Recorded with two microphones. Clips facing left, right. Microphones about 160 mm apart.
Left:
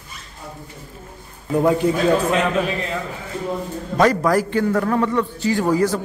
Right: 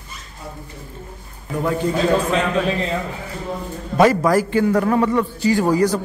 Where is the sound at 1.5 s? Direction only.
15° left (ahead or behind).